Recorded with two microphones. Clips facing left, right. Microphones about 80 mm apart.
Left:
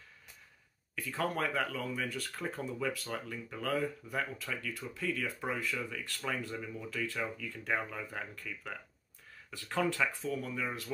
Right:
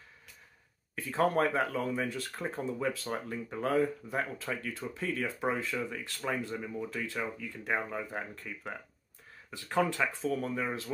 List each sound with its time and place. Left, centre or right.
0.9 s speech: right
10.2 s speech: right